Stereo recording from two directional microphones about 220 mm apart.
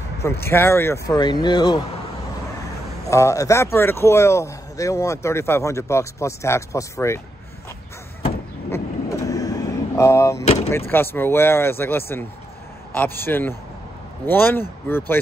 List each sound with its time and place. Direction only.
0.2 s speech: 10° left (ahead or behind)
3.1 s speech: 15° left (ahead or behind)
8.6 s vehicle: 15° left (ahead or behind)
10.4 s door: 30° left (ahead or behind)
10.9 s speech: 10° left (ahead or behind)